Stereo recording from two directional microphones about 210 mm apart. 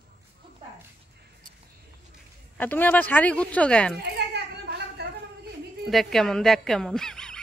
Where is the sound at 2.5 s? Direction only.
10° left (ahead or behind).